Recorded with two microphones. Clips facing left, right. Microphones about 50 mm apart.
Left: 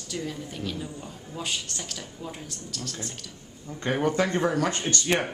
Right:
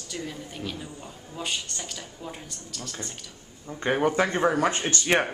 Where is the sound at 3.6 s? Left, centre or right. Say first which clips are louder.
Right 2 dB; centre.